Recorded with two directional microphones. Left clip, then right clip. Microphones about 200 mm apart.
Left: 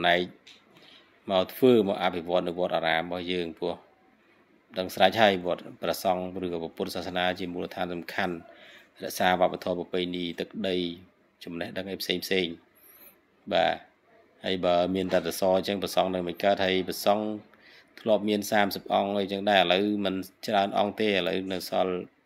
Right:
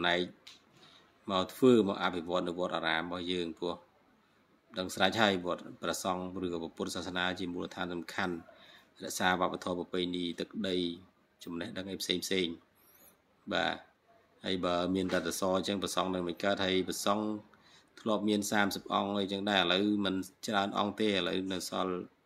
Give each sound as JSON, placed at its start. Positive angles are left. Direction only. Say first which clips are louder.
{"t": 0.0, "sound": "speech", "louder": "left 7 dB", "side_deg": 10}